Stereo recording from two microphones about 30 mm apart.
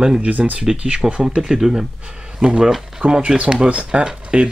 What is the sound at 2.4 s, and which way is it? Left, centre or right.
Speech, right.